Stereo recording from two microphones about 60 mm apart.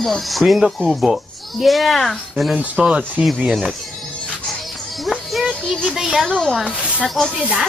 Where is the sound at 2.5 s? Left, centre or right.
Centre.